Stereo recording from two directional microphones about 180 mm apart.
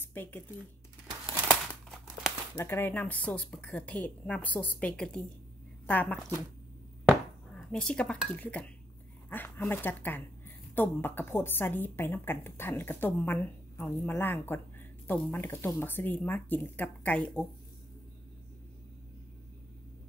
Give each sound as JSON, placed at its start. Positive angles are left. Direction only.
{"t": 0.0, "sound": "a sound", "side_deg": 10}
{"t": 1.5, "sound": "crumpling", "side_deg": 5}
{"t": 2.5, "sound": "a woman's voice", "side_deg": 10}